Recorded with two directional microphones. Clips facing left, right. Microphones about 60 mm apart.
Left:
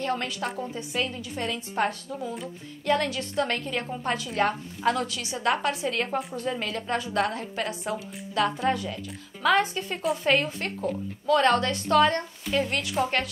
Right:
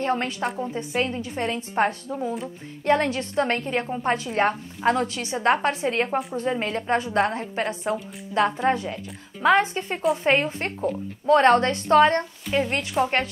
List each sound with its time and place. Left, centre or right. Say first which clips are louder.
0.0 s a woman's voice: right 4 dB; right